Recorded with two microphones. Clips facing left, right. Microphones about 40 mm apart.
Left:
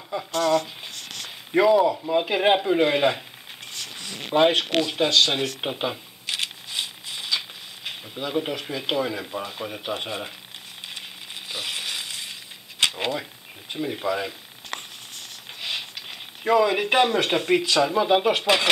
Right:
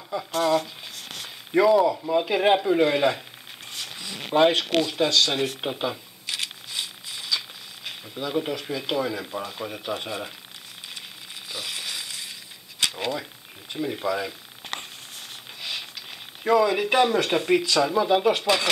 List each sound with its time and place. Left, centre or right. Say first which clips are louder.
0.3 s a sound: left 1 dB; centre
1.8 s speech: even; centre
2.1 s speech: even; centre
4.2 s speech: even; centre; by 5.4 s left
5.6 s shuffling cards: left 1 dB; left
8.2 s speech: even; centre
9.8 s speech: left 1 dB; left
11.0 s frying: left 2 dB; left
13.7 s speech: even; centre
16.4 s speech: left 1 dB; centre